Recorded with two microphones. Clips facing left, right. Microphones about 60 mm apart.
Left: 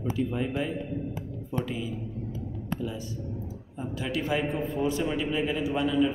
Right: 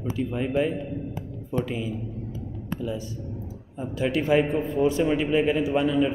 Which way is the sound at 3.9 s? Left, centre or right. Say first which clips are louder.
Right 7 dB; right.